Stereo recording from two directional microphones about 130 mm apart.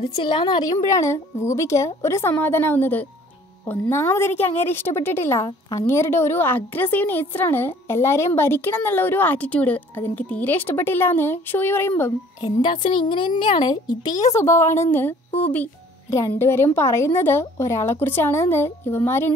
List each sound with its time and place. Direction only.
0.0 s a woman's voice: 40° left (ahead or behind); by 12.1 s 15° left (ahead or behind)
12.6 s speech: 40° left (ahead or behind)
14.3 s a woman's voice: 20° left (ahead or behind)